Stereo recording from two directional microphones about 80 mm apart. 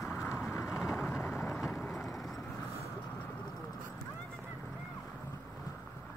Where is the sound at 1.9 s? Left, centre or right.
Centre.